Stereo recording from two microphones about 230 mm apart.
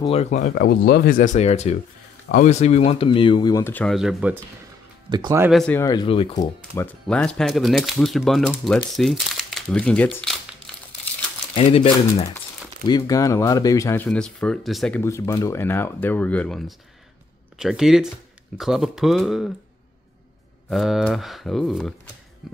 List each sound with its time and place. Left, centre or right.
0.0 s speech: left
0.7 s speech: left; by 4.4 s centre
5.1 s speech: centre
5.5 s speech: centre
5.8 s speech: centre
11.5 s speech: left; by 19.5 s centre
20.7 s speech: centre